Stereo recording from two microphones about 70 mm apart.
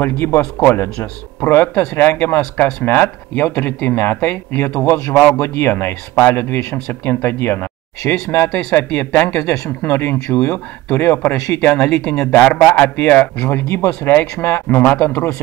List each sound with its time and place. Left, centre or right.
0.0 s speech: left
8.5 s speech: centre
8.7 s speech: left
9.8 s speech: left
11.9 s speech: centre
12.3 s speech: left